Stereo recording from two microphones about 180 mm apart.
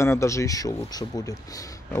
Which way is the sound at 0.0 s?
15° left (ahead or behind).